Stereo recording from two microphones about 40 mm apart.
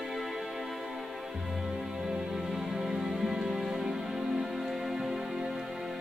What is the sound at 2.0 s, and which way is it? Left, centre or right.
Music, centre.